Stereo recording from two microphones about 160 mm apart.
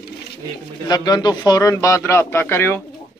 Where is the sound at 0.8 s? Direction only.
25° left (ahead or behind).